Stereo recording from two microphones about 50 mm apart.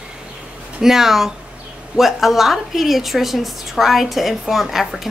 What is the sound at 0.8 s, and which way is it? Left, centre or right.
A woman's voice, centre.